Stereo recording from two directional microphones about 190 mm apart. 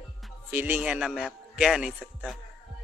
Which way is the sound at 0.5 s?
10° right (ahead or behind).